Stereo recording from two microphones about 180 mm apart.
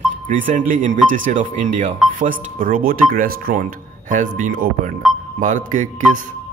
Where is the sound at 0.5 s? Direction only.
45° right (ahead or behind).